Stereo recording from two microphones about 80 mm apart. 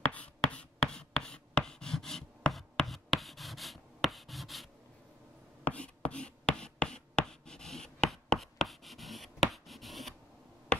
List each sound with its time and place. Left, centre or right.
0.1 s writing: centre
5.6 s writing: centre